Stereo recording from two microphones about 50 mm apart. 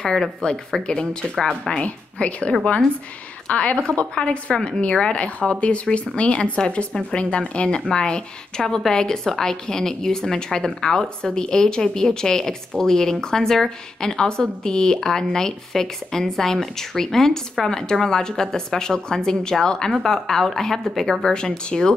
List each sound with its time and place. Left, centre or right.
0.0 s a woman's voice: centre
1.8 s a woman's voice: left